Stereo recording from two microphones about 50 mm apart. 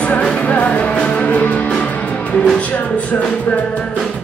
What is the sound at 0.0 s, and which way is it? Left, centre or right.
Music, left.